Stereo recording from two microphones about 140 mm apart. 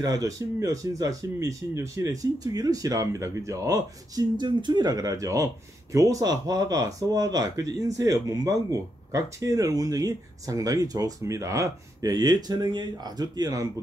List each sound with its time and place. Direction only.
0.0 s speech: 25° right (ahead or behind)